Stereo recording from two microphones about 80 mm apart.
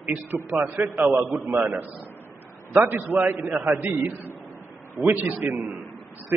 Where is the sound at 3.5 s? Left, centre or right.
Right.